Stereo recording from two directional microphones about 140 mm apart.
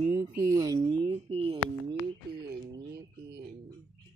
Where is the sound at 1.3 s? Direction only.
45° right (ahead or behind).